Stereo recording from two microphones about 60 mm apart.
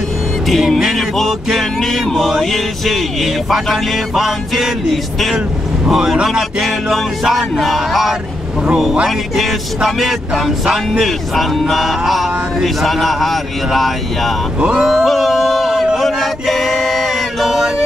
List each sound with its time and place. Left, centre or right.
0.5 s music: centre
5.9 s speech: centre
6.6 s music: centre
9.8 s music: centre
14.6 s speech: centre
15.0 s male singing: centre